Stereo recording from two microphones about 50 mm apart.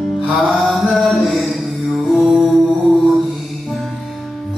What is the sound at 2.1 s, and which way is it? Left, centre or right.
Music, centre.